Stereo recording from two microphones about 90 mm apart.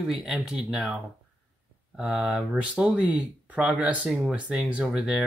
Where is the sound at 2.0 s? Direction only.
5° right (ahead or behind).